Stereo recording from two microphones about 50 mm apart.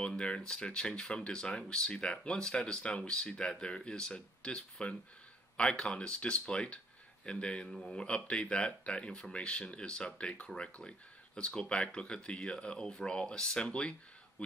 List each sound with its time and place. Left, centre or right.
0.0 s speech: left